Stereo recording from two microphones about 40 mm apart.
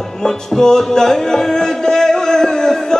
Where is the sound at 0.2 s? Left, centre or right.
Centre.